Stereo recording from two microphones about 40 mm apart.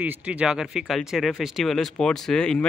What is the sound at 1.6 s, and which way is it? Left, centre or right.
Speech, centre.